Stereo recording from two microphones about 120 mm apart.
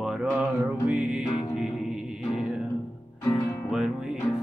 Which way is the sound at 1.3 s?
40° left (ahead or behind).